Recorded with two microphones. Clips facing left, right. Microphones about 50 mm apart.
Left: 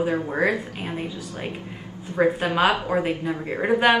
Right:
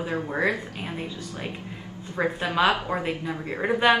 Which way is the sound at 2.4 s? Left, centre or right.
Centre.